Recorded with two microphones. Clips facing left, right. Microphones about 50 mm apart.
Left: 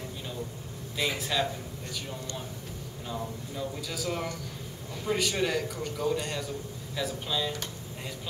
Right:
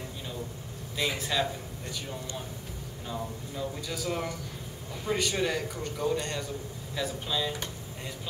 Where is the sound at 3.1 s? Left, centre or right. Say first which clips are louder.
Even; centre.